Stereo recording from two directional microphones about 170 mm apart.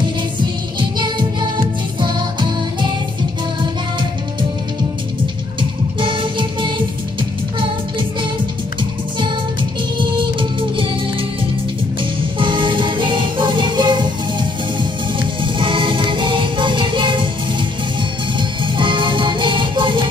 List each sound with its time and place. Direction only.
0.7 s music: 25° right (ahead or behind)
5.6 s music: 30° right (ahead or behind)
9.9 s music: 30° right (ahead or behind)
12.4 s music: 30° right (ahead or behind)